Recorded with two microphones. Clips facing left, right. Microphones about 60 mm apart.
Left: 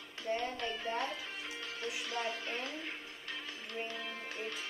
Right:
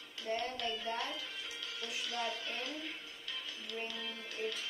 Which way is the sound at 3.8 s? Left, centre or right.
Left.